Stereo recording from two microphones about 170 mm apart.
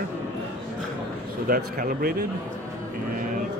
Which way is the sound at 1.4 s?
55° right (ahead or behind).